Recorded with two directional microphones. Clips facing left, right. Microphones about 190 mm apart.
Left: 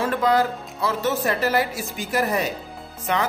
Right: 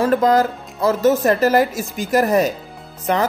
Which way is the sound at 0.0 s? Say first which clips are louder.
Right 5 dB; 45° right (ahead or behind).